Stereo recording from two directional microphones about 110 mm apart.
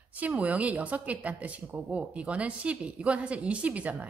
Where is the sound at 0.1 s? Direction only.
15° right (ahead or behind).